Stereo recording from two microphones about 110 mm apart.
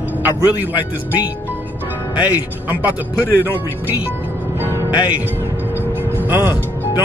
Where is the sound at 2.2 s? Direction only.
15° right (ahead or behind).